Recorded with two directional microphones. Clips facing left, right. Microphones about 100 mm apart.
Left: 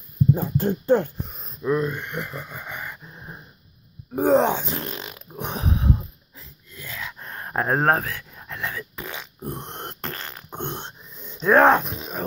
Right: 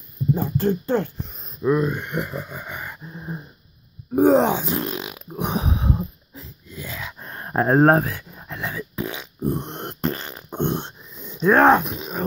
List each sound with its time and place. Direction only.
0.6 s speech: 15° left (ahead or behind)
1.6 s speech: 10° right (ahead or behind)
4.1 s grunt: 5° right (ahead or behind); by 6.4 s 20° right (ahead or behind)
6.4 s a sound: 10° right (ahead or behind)